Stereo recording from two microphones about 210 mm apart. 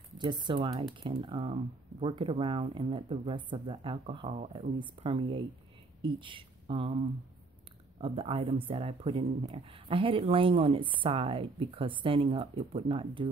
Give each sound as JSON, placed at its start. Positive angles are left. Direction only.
{"t": 0.2, "sound": "speech", "side_deg": -20}